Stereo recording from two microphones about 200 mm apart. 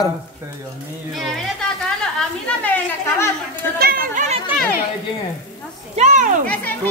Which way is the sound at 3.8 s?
45° right (ahead or behind).